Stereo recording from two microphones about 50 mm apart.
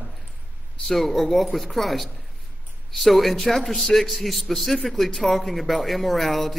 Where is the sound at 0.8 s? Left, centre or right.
Centre.